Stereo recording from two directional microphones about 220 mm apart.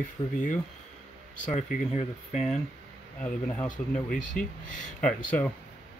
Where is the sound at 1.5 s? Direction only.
30° left (ahead or behind).